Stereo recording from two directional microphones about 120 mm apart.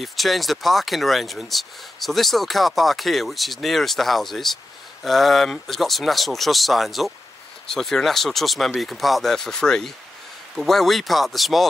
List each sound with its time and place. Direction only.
0.0 s speech: centre (ahead or behind)